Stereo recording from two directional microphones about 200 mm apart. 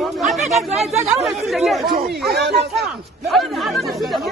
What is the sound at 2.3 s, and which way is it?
Speech, 55° right (ahead or behind).